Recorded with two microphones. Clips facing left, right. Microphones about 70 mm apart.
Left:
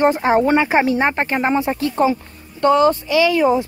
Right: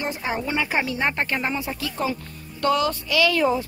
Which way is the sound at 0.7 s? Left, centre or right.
Left.